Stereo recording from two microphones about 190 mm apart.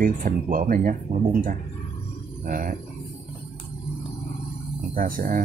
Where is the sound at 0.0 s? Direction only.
45° right (ahead or behind).